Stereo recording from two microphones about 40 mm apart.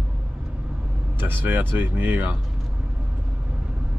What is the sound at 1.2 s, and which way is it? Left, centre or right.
Speech, right.